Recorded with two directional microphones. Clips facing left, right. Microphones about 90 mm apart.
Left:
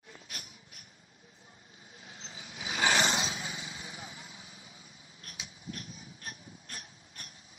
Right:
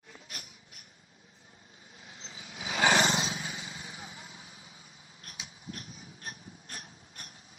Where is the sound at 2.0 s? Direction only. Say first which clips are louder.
Even; 35° right (ahead or behind).